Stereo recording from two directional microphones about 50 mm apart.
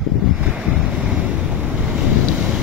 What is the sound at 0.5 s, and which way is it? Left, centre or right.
Waves, centre.